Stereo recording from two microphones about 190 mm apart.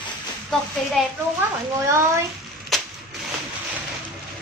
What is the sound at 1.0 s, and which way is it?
Speech, centre (ahead or behind).